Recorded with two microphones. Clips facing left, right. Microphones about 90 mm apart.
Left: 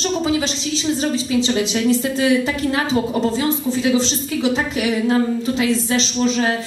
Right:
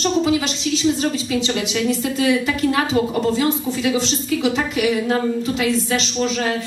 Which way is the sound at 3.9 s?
30° left (ahead or behind).